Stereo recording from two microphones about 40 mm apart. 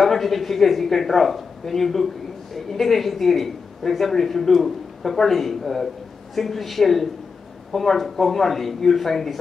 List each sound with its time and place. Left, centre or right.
0.0 s a man's voice: centre